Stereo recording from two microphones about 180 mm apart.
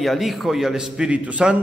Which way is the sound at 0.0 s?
Centre (ahead or behind).